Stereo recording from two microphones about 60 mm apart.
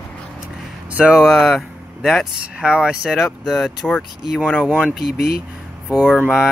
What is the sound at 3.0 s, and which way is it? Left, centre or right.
Mantra, centre.